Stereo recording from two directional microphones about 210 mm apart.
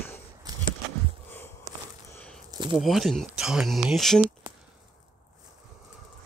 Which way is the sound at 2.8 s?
Centre (ahead or behind).